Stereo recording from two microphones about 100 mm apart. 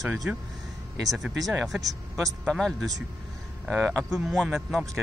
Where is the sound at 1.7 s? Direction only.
Centre (ahead or behind).